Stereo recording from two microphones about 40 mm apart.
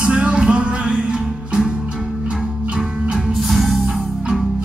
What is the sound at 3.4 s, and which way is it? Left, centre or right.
Music, centre.